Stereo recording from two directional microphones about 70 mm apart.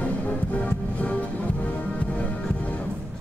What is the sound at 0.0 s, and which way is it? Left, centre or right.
Music, centre.